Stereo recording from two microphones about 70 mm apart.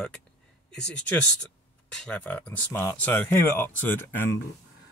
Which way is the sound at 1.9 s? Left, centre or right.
Centre.